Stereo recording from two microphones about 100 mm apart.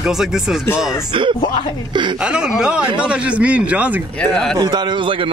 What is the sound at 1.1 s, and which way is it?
A man's voice, 60° right (ahead or behind).